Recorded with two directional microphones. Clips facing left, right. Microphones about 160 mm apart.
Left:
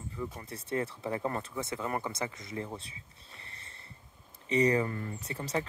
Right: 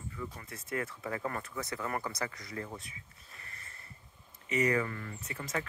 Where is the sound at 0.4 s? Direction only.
30° left (ahead or behind).